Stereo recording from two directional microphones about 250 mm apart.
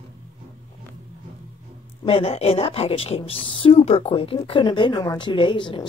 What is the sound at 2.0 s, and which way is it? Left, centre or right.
Speech, left.